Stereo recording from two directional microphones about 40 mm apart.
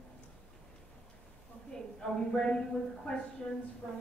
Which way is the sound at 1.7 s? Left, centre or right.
Centre.